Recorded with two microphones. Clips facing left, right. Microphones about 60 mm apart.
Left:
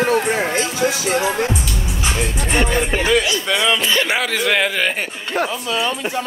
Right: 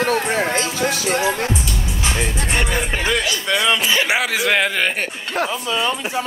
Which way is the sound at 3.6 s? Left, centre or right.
Centre.